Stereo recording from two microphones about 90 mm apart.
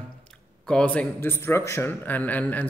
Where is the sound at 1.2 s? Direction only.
30° left (ahead or behind).